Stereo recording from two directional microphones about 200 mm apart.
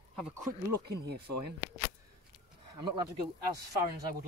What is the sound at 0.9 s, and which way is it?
Speech, 55° right (ahead or behind).